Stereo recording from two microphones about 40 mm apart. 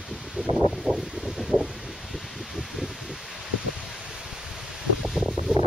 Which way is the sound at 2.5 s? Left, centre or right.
Centre.